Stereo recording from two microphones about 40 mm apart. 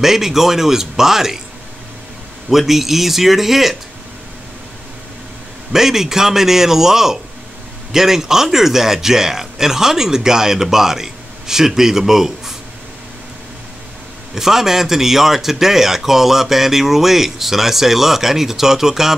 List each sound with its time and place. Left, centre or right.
0.0 s a man's voice: centre
2.5 s speech: centre
5.7 s a man's voice: centre
14.3 s a man's voice: centre